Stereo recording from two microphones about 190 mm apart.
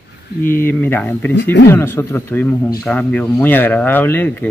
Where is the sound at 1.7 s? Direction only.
15° left (ahead or behind).